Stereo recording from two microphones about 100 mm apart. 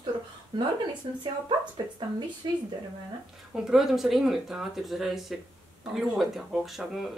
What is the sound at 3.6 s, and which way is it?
Speech, 5° right (ahead or behind).